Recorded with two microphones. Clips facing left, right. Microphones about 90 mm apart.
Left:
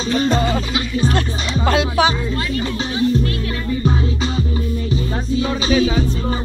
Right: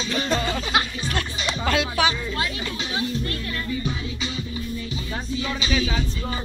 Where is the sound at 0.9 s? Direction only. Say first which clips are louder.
Left 9 dB; 35° left (ahead or behind).